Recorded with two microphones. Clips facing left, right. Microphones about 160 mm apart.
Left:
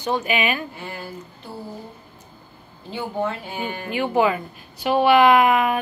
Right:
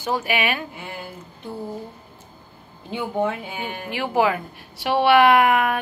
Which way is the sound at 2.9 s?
15° right (ahead or behind).